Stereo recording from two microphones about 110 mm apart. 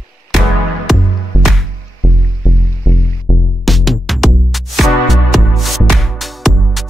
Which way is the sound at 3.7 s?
Centre (ahead or behind).